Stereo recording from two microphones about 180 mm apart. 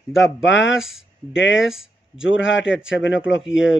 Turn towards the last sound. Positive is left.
turn(degrees=90)